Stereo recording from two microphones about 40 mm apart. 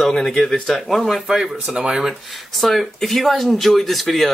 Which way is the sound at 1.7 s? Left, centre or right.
Right.